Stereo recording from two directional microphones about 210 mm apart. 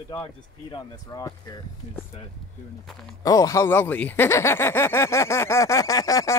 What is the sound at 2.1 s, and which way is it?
Speech, 30° left (ahead or behind).